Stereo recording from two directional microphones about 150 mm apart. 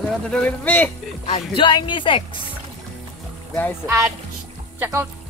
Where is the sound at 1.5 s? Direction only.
35° left (ahead or behind).